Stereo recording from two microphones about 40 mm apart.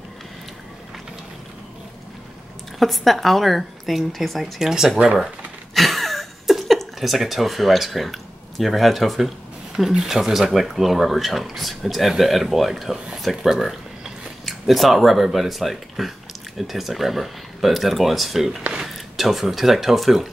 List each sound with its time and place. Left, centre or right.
2.8 s speech: centre
4.6 s speech: centre
5.8 s a sound: centre
9.8 s speech: centre
13.5 s a sound: centre
14.4 s speech: centre